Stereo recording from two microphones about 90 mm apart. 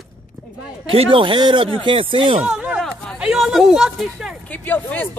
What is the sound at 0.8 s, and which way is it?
Speech, 90° right.